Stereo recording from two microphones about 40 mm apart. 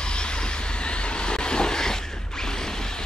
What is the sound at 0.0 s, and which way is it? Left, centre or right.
Vehicle, left.